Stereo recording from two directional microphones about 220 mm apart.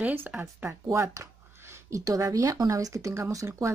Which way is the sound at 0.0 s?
10° right (ahead or behind).